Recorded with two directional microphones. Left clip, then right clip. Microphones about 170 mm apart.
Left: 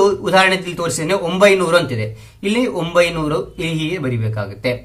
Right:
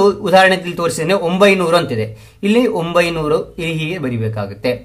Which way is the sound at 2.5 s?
35° right (ahead or behind).